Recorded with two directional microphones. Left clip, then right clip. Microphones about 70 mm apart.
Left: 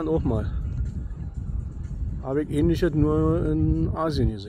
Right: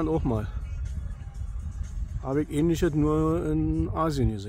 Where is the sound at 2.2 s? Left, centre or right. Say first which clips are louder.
Left 2 dB; centre.